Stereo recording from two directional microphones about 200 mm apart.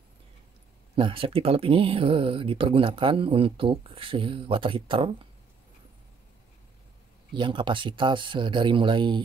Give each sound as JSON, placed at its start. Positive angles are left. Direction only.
{"t": 0.9, "sound": "speech", "side_deg": -25}
{"t": 7.3, "sound": "speech", "side_deg": -25}